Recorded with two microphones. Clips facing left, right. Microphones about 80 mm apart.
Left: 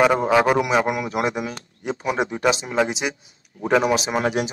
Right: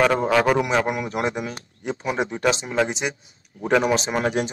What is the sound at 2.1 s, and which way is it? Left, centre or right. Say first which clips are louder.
Speech: left 1 dB; left.